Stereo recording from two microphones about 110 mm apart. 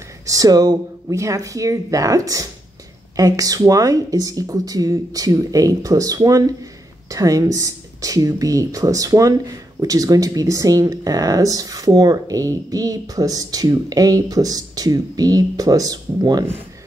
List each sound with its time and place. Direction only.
0.3 s speech: 35° right (ahead or behind)